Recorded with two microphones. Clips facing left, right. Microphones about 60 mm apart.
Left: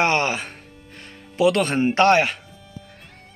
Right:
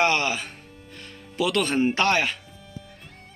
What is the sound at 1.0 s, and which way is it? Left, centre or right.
Music, left.